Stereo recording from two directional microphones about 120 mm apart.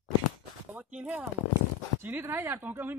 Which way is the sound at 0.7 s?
10° right (ahead or behind).